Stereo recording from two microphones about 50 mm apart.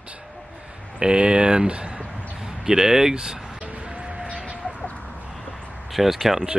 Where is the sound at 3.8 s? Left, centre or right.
Right.